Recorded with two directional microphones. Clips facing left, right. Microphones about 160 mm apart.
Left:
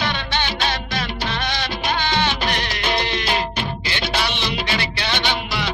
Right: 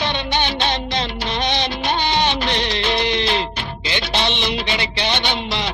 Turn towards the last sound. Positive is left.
turn(degrees=-20)  # may be behind; listen again after turning